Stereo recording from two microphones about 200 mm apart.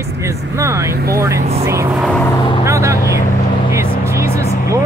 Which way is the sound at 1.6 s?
10° right (ahead or behind).